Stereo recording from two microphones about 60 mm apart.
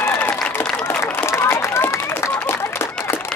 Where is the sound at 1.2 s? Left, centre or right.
Left.